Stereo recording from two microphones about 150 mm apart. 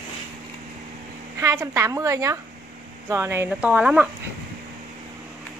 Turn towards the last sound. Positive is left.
turn(degrees=-10)  # may be behind; listen again after turning